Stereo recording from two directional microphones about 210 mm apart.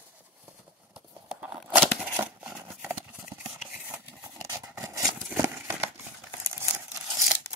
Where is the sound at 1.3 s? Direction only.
5° right (ahead or behind).